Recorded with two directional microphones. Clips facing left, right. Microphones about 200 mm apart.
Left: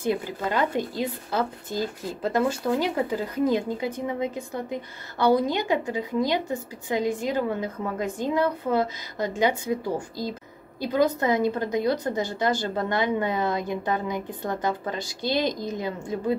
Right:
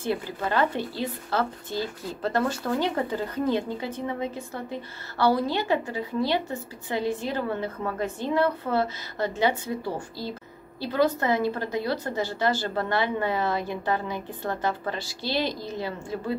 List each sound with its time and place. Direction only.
0.0 s a woman's voice: 15° left (ahead or behind)